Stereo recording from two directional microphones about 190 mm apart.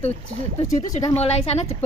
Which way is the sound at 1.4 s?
35° left (ahead or behind).